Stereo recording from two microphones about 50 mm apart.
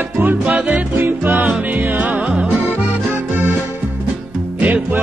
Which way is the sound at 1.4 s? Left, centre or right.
Right.